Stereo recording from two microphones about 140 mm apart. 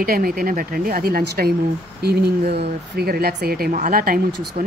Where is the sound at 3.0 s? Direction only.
90° right.